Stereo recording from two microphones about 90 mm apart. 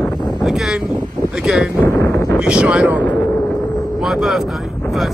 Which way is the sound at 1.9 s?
35° left (ahead or behind).